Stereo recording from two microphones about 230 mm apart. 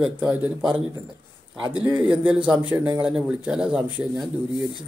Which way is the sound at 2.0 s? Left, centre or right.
Centre.